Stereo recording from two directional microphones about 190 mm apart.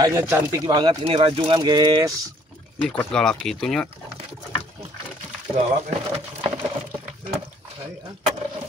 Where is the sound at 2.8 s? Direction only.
5° left (ahead or behind).